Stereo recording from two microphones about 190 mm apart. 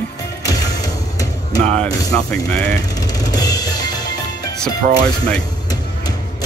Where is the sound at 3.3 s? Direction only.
20° left (ahead or behind).